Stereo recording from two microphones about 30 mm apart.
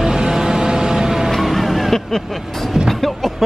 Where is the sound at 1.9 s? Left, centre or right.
Centre.